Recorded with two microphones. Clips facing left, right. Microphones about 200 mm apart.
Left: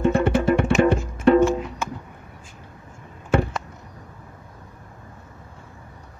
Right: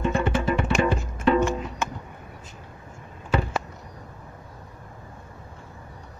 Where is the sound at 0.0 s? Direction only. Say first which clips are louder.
Left 5 dB; 55° left (ahead or behind).